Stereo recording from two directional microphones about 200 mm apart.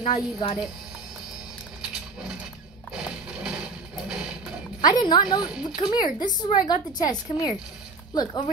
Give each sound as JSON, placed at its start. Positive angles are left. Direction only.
{"t": 0.0, "sound": "a woman's voice", "side_deg": 25}
{"t": 2.9, "sound": "mechanisms", "side_deg": -5}
{"t": 4.8, "sound": "a woman's voice", "side_deg": 20}